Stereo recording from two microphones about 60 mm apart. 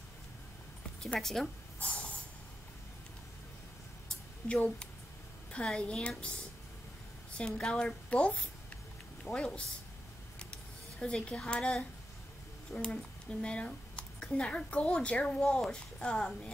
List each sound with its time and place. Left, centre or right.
1.2 s speech: centre
1.8 s hiss: centre
4.5 s speech: centre
7.3 s speech: centre
8.1 s speech: left
10.4 s a sound: centre
12.7 s speech: centre
15.2 s speech: centre